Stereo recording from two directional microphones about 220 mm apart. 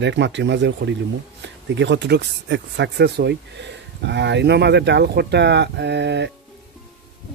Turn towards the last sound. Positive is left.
turn(degrees=-50)  # may be behind; listen again after turning